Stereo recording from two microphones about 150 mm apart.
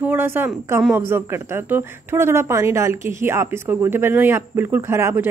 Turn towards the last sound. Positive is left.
turn(degrees=-15)  # may be behind; listen again after turning